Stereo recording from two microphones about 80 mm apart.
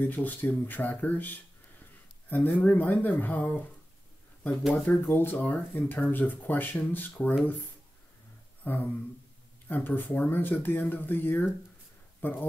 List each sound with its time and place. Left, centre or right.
0.0 s speech: left
5.0 s speech: left
8.6 s a sound: left
9.7 s speech: left